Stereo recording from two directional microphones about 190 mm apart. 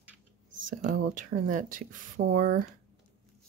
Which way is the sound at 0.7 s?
40° right (ahead or behind).